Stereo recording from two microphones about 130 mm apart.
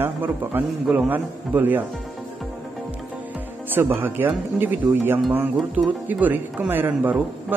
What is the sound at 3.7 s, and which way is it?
Speech, 15° right (ahead or behind).